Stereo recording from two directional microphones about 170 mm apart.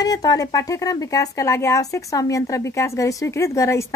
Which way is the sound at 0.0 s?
20° left (ahead or behind).